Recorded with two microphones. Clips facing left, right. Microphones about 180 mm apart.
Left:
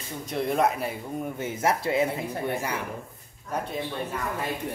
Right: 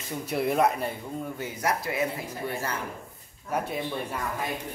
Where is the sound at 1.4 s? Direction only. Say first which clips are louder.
Left 4 dB; 25° left (ahead or behind).